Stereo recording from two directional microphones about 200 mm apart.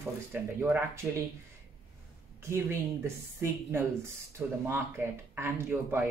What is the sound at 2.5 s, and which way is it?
A woman's voice, 15° right (ahead or behind).